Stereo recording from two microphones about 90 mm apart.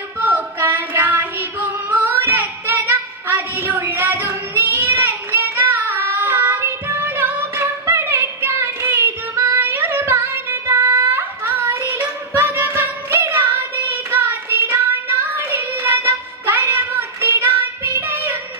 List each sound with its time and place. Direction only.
0.2 s child singing: 20° right (ahead or behind)